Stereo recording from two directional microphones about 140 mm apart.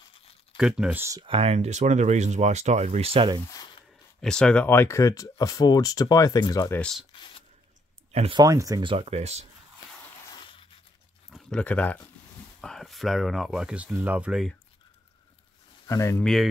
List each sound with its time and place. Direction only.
0.6 s speech: 5° right (ahead or behind)
1.2 s speech: 45° right (ahead or behind)
4.2 s speech: 5° left (ahead or behind); by 6.8 s 20° left (ahead or behind)
6.8 s speech: 5° left (ahead or behind)
7.1 s a sound: 35° left (ahead or behind)
8.1 s speech: 45° right (ahead or behind)
8.4 s speech: 25° right (ahead or behind)
8.9 s speech: 50° right (ahead or behind)
11.2 s speech: 5° left (ahead or behind)
15.9 s speech: 20° left (ahead or behind)